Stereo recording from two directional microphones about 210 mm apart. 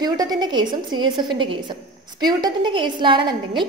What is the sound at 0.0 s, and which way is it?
A woman's voice, 20° right (ahead or behind).